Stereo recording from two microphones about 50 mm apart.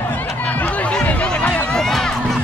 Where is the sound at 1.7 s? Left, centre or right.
Centre.